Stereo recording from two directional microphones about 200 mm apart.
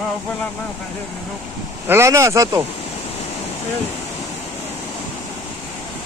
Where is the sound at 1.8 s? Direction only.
15° right (ahead or behind).